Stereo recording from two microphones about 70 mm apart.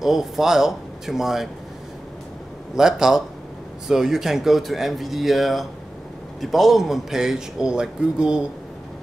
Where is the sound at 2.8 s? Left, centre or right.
Centre.